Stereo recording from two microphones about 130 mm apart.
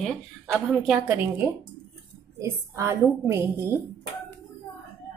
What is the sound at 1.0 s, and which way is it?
A woman's voice, 15° right (ahead or behind).